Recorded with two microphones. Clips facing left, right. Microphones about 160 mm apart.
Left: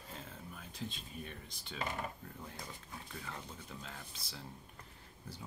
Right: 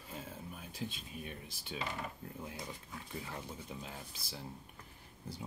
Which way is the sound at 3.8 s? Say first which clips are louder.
Right 2 dB; 15° right (ahead or behind).